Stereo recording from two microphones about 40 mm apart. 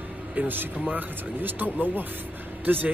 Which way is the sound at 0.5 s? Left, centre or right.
Right.